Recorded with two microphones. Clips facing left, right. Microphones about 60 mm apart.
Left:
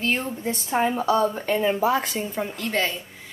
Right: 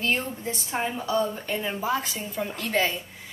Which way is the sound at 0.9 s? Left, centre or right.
Left.